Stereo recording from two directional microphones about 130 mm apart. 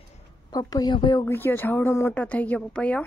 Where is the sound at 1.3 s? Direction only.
15° left (ahead or behind).